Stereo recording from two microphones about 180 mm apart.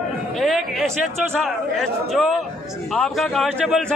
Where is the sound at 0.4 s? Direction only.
Centre (ahead or behind).